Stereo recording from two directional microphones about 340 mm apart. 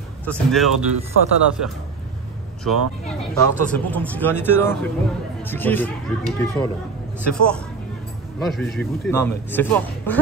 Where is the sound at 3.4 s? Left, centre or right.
Centre.